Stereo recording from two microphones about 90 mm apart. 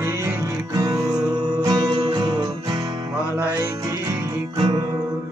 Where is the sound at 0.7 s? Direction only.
45° right (ahead or behind).